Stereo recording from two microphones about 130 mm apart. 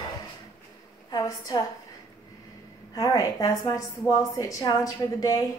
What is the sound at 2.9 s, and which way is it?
A woman's voice, 25° left (ahead or behind).